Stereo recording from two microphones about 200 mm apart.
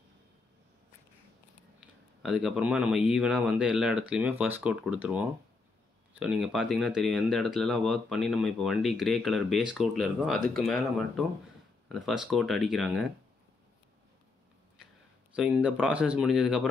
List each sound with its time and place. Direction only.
1.8 s speech: 5° right (ahead or behind)
15.3 s speech: 5° right (ahead or behind)